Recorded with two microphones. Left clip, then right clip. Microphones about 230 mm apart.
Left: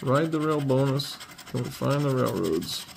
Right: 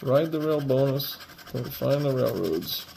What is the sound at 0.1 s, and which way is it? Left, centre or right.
Speech, left.